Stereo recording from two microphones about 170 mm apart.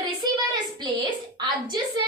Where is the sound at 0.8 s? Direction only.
25° right (ahead or behind).